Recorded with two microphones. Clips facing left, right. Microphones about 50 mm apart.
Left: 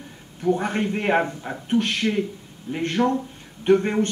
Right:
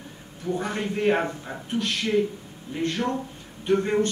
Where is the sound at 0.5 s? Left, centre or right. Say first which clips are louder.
Left 5 dB; left.